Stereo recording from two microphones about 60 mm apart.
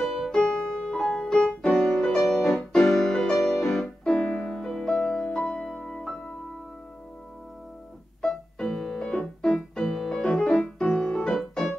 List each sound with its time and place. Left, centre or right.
0.0 s music: centre
5.1 s music: centre
5.8 s music: centre
8.2 s keyboard: centre
10.9 s music: centre
11.2 s music: centre